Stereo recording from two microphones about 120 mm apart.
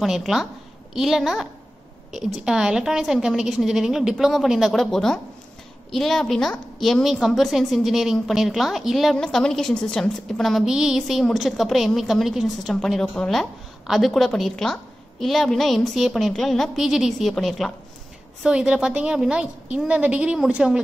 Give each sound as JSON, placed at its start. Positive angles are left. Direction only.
{"t": 0.0, "sound": "a woman's voice", "side_deg": 0}